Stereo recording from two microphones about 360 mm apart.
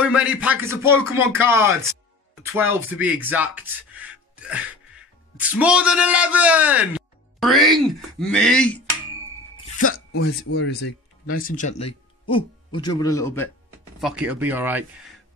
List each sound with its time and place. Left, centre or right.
0.0 s a man's voice: centre
10.1 s a man's voice: left; by 15.1 s centre